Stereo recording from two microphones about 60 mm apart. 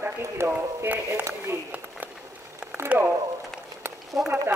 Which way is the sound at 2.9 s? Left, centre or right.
Right.